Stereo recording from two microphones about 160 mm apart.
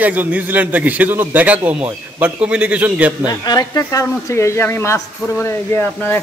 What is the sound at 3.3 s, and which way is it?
Speech, 25° left (ahead or behind).